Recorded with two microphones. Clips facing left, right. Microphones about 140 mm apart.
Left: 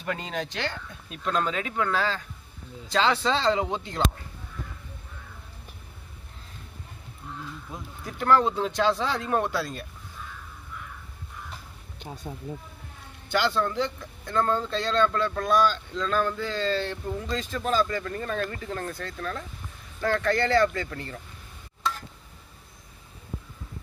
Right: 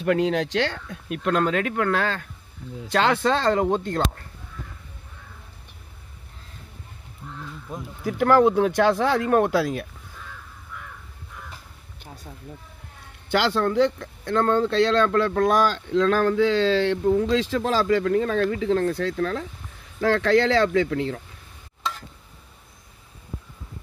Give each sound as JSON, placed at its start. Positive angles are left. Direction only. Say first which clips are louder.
{"t": 0.0, "sound": "speech", "louder": "right 10 dB", "side_deg": -70}
{"t": 8.0, "sound": "speech", "louder": "right 5 dB", "side_deg": -65}
{"t": 12.1, "sound": "speech", "louder": "left 5 dB", "side_deg": 20}
{"t": 13.3, "sound": "speech", "louder": "right 4 dB", "side_deg": -65}